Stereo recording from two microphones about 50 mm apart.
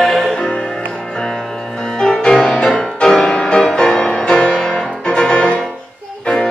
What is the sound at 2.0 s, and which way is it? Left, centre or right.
Music, centre.